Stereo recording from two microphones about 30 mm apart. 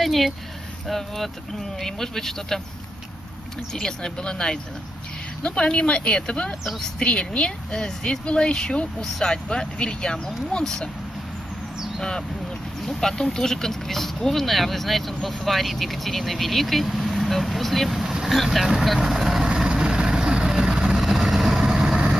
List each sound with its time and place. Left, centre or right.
0.0 s a sound: centre
0.8 s speech: centre
3.7 s a woman's voice: left
7.7 s speech: left
12.0 s speech: centre
19.7 s vehicle: right
21.0 s vehicle: centre